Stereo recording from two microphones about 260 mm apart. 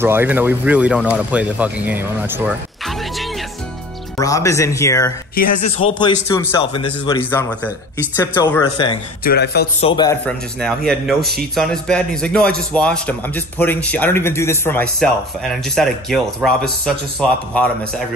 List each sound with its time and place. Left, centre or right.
0.0 s speech: centre
4.2 s a man's voice: centre
5.3 s a man's voice: left
5.9 s a man's voice: centre
9.2 s a man's voice: left
9.8 s a man's voice: centre
10.2 s a man's voice: centre